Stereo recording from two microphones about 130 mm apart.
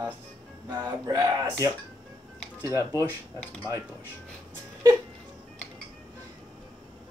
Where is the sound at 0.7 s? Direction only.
30° right (ahead or behind).